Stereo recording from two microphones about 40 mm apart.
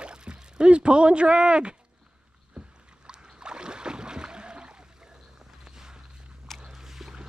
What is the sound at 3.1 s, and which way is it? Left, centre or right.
Boat, right.